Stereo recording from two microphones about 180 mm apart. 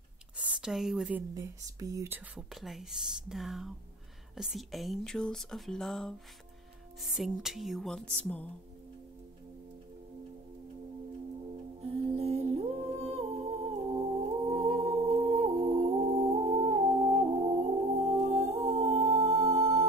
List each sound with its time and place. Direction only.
0.4 s speech: 5° right (ahead or behind)
1.3 s speech: 20° right (ahead or behind); by 6.1 s centre (ahead or behind)
7.2 s speech: 5° right (ahead or behind)
11.8 s humming: 35° right (ahead or behind)